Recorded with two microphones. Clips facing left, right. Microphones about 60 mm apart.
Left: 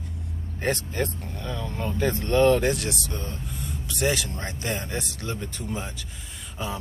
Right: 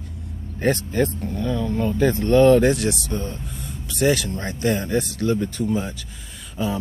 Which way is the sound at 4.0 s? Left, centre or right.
Centre.